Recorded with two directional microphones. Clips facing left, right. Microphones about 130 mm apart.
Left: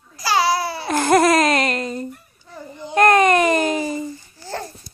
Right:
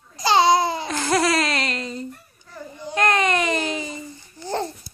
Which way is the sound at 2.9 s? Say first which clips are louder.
Left 6 dB; 45° left (ahead or behind).